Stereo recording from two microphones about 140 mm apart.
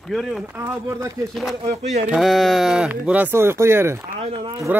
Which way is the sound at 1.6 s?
55° right (ahead or behind).